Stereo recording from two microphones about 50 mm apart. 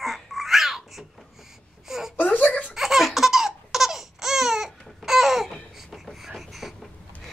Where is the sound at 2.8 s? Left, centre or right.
Centre.